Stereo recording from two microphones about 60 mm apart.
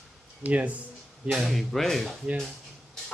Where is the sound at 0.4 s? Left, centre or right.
Right.